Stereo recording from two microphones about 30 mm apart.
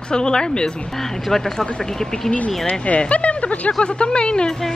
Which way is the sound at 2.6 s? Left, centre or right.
Left.